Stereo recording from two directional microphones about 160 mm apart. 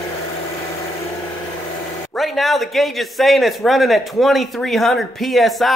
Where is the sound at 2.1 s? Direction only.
Centre (ahead or behind).